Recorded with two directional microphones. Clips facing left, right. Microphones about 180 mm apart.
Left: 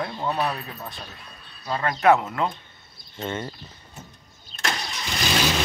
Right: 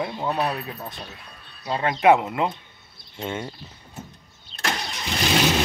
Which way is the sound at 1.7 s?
20° right (ahead or behind).